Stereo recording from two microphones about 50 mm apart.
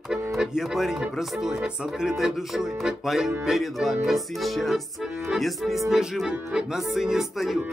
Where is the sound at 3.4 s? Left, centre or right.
Centre.